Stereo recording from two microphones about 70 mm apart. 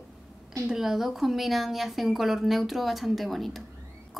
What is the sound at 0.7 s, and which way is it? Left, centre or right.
Speech, centre.